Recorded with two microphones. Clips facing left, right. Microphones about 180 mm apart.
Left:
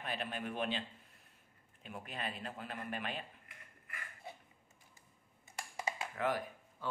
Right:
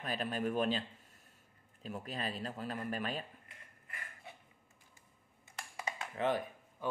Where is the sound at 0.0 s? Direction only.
40° right (ahead or behind).